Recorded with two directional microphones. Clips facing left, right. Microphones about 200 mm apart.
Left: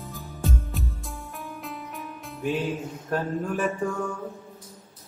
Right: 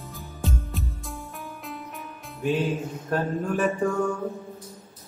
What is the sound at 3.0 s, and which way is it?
Speech, 5° left (ahead or behind).